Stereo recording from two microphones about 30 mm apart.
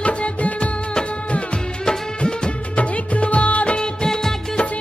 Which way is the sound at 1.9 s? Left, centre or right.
Left.